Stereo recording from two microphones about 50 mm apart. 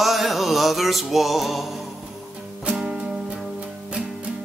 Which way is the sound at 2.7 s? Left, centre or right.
Centre.